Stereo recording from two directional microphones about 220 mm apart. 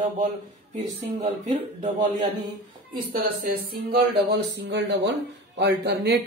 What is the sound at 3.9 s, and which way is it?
Speech, 50° right (ahead or behind).